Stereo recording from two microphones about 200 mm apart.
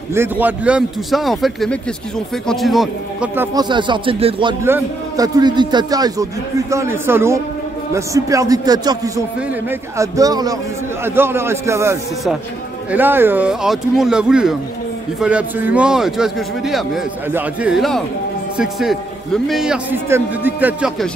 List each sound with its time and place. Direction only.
0.1 s speech: 10° right (ahead or behind)
3.3 s a man's voice: 20° right (ahead or behind)
4.6 s a man's voice: 15° right (ahead or behind)